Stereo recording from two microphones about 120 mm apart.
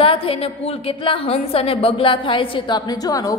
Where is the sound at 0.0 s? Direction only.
50° left (ahead or behind).